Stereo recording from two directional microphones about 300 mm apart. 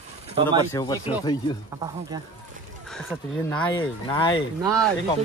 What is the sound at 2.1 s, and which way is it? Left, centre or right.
Speech, centre.